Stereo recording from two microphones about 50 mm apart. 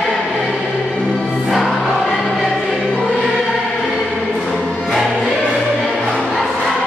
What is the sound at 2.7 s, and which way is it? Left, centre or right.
Choir, centre.